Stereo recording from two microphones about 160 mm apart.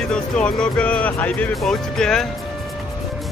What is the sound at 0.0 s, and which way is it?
Speech, 5° left (ahead or behind).